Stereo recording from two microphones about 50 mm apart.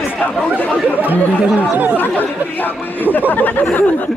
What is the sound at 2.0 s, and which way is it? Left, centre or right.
A man's voice, left.